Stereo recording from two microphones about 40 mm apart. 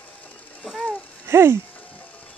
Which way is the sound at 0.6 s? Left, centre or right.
Centre.